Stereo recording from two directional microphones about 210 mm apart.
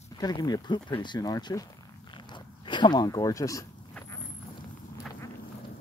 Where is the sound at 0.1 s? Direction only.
20° left (ahead or behind).